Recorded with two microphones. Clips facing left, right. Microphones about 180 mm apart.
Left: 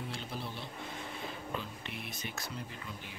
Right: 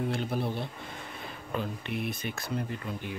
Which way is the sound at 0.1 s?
55° right (ahead or behind).